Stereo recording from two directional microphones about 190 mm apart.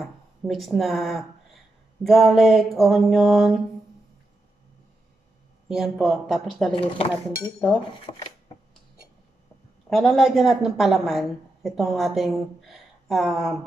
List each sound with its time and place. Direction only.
0.0 s speech: centre (ahead or behind)
5.7 s speech: centre (ahead or behind)
6.7 s speech: 30° left (ahead or behind)
9.8 s speech: centre (ahead or behind)